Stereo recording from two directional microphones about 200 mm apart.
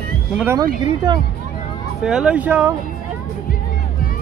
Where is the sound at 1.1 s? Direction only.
20° right (ahead or behind).